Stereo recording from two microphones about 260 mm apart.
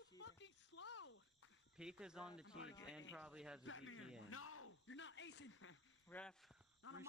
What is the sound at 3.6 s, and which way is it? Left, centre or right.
Speech, left.